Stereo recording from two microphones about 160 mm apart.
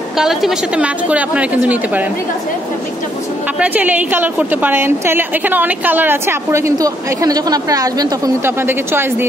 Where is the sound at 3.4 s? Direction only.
10° right (ahead or behind).